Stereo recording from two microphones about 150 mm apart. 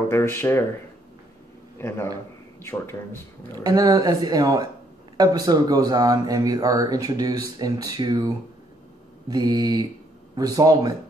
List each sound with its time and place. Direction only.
0.1 s speech: 15° left (ahead or behind)
1.8 s a man's voice: 15° left (ahead or behind)
3.5 s speech: 25° right (ahead or behind)
9.3 s speech: 25° right (ahead or behind)